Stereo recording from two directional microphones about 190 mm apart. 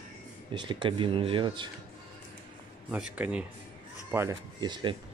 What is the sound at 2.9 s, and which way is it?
Speech, 5° right (ahead or behind).